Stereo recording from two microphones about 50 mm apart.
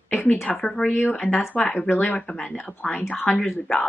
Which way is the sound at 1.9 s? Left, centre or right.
Left.